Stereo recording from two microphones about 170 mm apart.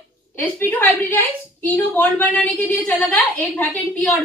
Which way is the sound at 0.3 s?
10° left (ahead or behind).